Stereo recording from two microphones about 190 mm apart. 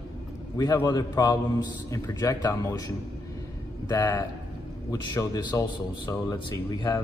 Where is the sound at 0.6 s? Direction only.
20° left (ahead or behind).